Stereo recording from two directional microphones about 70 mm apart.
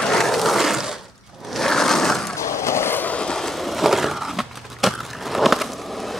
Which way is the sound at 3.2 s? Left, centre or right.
Centre.